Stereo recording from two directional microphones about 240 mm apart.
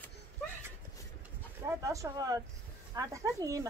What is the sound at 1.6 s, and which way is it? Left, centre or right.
Speech, centre.